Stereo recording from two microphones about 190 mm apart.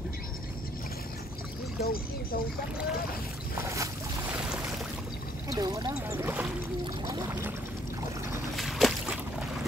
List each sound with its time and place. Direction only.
1.8 s speech: 50° left (ahead or behind)
3.5 s boat: 15° right (ahead or behind)
5.5 s a sound: 20° right (ahead or behind)
5.9 s speech: 10° right (ahead or behind)
7.1 s a sound: 20° right (ahead or behind)
8.5 s boat: centre (ahead or behind)